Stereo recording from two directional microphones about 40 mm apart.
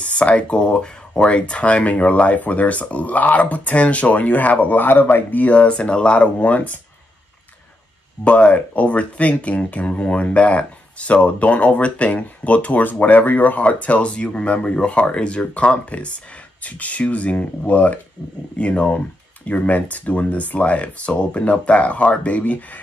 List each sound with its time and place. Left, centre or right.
0.0 s speech: left
5.4 s speech: left
8.2 s speech: left